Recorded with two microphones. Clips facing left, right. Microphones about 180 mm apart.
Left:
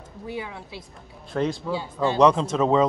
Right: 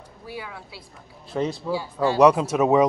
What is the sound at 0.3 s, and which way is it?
Speech, 20° left (ahead or behind).